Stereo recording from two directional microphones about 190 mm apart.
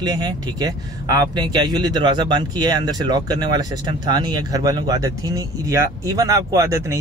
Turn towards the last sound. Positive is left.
turn(degrees=-15)  # may be behind; listen again after turning